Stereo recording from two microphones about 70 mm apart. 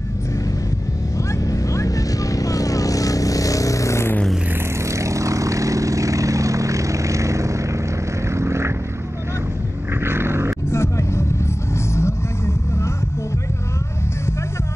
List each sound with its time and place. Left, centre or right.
1.3 s vehicle: left
4.8 s vehicle: right
10.0 s a sound: right
10.7 s music: left
11.7 s vehicle: left